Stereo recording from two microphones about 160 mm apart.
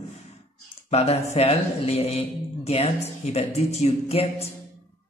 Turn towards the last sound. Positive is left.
turn(degrees=40)  # may be behind; listen again after turning